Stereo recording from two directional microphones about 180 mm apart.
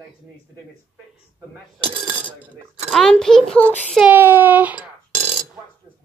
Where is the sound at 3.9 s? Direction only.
10° right (ahead or behind).